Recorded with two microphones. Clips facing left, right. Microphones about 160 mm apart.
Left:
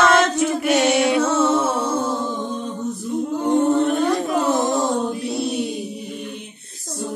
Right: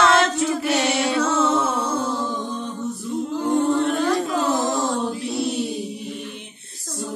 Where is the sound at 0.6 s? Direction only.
20° left (ahead or behind).